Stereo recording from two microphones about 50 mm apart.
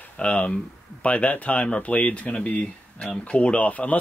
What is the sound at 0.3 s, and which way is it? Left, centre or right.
Speech, left.